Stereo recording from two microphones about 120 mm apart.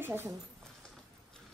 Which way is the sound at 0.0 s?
20° right (ahead or behind).